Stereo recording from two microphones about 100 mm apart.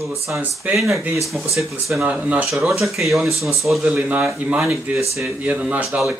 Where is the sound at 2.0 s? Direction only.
15° right (ahead or behind).